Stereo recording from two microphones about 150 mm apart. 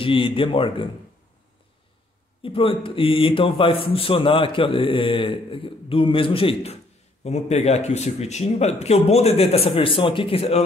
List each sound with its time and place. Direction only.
0.0 s a man's voice: 35° left (ahead or behind)
2.4 s a man's voice: 35° left (ahead or behind)